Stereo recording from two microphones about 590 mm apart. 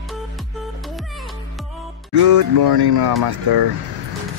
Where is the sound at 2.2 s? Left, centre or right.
Right.